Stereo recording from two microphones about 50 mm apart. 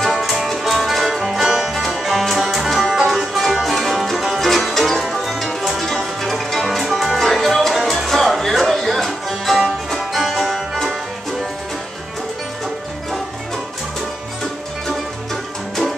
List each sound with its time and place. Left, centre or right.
0.0 s music: centre